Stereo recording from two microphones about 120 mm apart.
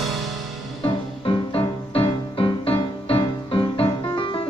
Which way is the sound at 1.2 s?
45° left (ahead or behind).